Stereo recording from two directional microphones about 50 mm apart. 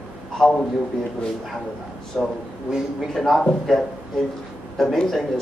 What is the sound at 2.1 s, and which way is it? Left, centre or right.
Speech, centre.